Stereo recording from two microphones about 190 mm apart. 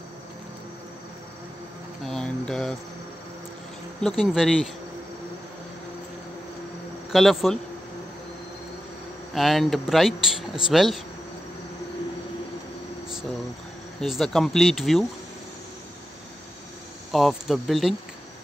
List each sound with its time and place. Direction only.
2.0 s a sound: 5° left (ahead or behind)
4.2 s speech: centre (ahead or behind)
7.1 s speech: centre (ahead or behind)
9.3 s speech: centre (ahead or behind)
14.0 s speech: centre (ahead or behind)
17.1 s speech: centre (ahead or behind)